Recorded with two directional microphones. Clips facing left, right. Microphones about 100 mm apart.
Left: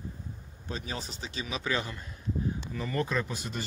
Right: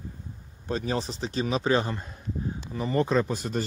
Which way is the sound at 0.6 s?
45° right (ahead or behind).